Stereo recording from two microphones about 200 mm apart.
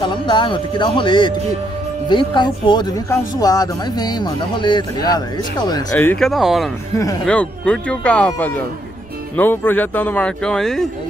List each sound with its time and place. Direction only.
0.0 s speech: 25° left (ahead or behind); by 10.9 s centre (ahead or behind)